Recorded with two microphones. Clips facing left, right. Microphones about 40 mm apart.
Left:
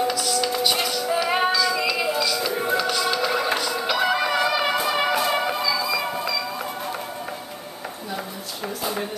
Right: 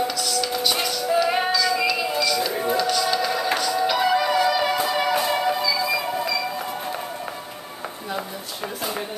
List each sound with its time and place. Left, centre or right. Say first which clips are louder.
0.0 s music: left 2 dB; centre; by 3.9 s left
4.0 s music: even; centre
4.5 s music: right 1 dB; left